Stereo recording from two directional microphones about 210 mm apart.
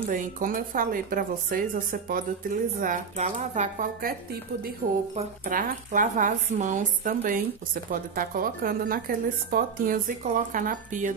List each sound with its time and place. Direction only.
0.1 s a woman's voice: 40° right (ahead or behind)
5.1 s a woman's voice: 35° right (ahead or behind)